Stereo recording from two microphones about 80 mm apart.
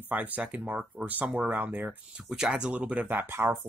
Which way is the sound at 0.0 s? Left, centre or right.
Right.